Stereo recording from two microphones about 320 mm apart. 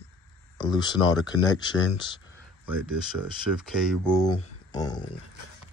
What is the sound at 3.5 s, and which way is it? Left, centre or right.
Speech, centre.